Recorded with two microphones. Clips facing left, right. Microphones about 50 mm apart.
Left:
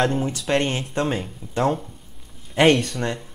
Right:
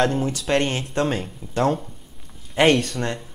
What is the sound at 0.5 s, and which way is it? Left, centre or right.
Speech, centre.